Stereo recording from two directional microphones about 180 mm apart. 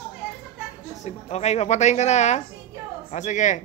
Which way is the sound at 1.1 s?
35° left (ahead or behind).